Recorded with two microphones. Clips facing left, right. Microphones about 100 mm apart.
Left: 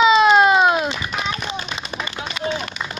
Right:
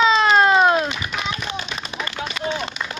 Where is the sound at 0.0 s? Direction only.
15° left (ahead or behind).